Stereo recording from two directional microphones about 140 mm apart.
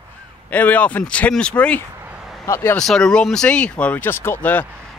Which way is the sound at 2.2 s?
Centre (ahead or behind).